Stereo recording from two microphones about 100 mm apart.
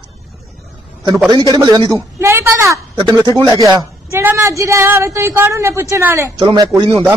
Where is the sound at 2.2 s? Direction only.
25° right (ahead or behind).